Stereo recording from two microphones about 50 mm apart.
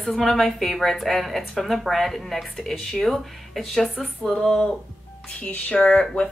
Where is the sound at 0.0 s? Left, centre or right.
Centre.